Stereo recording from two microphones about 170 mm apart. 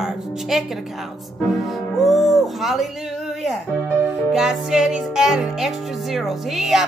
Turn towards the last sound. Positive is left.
turn(degrees=0)  # may be behind; listen again after turning